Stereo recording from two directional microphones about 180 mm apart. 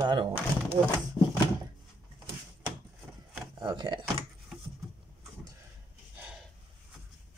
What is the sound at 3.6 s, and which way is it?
Speech, 25° right (ahead or behind).